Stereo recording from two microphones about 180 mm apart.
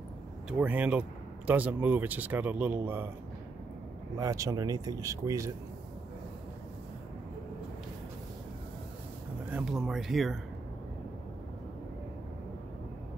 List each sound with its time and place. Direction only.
0.5 s speech: 10° right (ahead or behind)
4.2 s speech: 20° right (ahead or behind)
9.5 s speech: 5° right (ahead or behind)